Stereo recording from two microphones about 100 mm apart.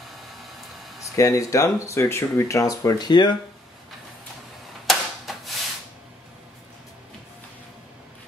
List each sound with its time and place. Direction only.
1.1 s speech: 35° left (ahead or behind)
3.1 s speech: 50° left (ahead or behind)
4.8 s a sound: centre (ahead or behind)